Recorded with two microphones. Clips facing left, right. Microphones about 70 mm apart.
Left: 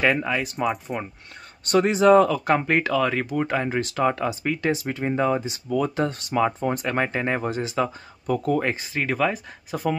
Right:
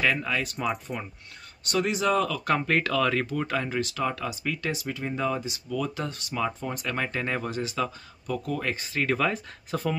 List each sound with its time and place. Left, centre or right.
0.0 s speech: left; by 0.9 s centre
1.6 s speech: left
8.7 s speech: centre